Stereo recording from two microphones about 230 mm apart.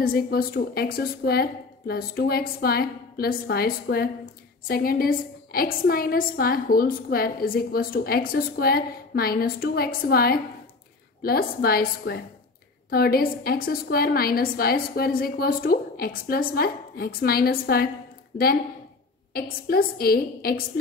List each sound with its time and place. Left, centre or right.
0.0 s a woman's voice: left
19.3 s a woman's voice: left